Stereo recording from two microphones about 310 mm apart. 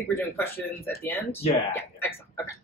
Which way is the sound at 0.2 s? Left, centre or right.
Centre.